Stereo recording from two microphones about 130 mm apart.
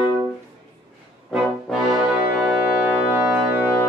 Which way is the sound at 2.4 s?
5° right (ahead or behind).